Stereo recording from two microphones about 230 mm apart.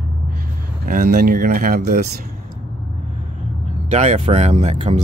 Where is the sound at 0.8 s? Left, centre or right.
Right.